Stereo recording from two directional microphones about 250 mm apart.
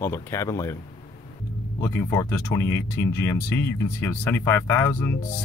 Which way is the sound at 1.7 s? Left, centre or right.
Centre.